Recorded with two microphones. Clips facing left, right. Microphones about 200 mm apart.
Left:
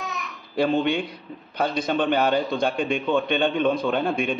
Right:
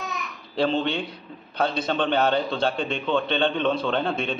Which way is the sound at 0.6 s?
10° left (ahead or behind).